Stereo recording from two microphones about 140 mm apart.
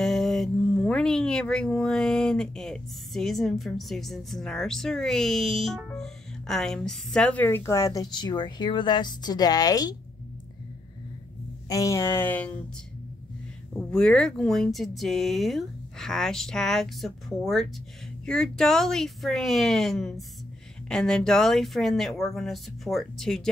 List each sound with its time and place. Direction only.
0.0 s speech: centre (ahead or behind); by 9.9 s 25° left (ahead or behind)
11.7 s speech: 20° left (ahead or behind)
13.7 s speech: 5° left (ahead or behind)